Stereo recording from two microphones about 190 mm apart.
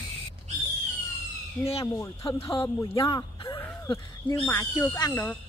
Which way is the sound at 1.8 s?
15° left (ahead or behind).